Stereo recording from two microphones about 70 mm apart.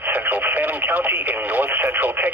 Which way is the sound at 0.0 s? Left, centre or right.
Right.